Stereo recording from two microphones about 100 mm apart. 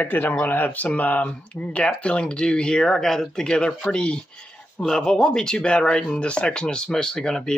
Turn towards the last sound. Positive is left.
turn(degrees=5)  # may be behind; listen again after turning